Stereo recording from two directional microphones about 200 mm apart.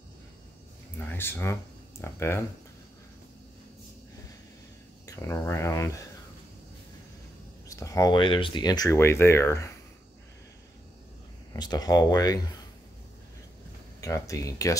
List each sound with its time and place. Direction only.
0.9 s speech: 10° left (ahead or behind)
5.0 s speech: 15° left (ahead or behind)
7.6 s speech: 15° left (ahead or behind)
11.5 s speech: 20° left (ahead or behind)
14.0 s speech: 15° left (ahead or behind)